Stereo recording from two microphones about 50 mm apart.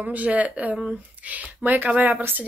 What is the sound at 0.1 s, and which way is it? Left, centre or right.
Speech, right.